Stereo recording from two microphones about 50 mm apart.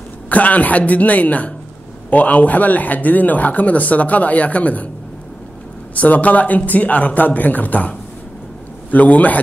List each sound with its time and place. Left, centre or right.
0.3 s speech: left
5.9 s speech: left
8.9 s speech: left